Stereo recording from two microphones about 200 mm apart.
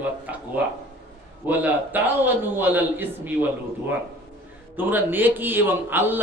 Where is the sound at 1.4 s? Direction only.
10° right (ahead or behind).